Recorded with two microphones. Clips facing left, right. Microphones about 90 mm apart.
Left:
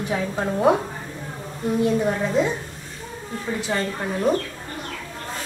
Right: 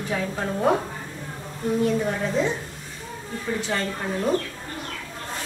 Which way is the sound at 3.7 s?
15° left (ahead or behind).